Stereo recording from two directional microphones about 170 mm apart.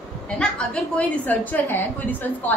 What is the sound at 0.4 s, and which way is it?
A woman's voice, 5° left (ahead or behind).